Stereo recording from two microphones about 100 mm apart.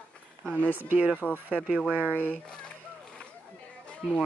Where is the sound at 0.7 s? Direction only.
20° right (ahead or behind).